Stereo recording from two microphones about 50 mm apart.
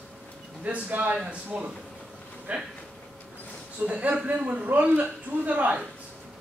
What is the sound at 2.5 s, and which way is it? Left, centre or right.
Speech, right.